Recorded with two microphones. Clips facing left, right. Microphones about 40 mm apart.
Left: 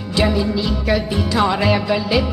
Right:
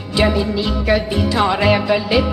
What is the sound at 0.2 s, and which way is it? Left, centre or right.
Music, centre.